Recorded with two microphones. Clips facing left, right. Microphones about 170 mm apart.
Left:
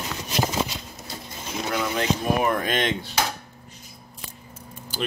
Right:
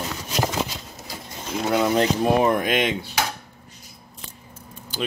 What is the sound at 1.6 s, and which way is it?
Speech, 25° right (ahead or behind).